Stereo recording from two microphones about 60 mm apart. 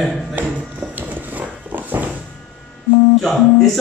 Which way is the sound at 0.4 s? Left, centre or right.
Right.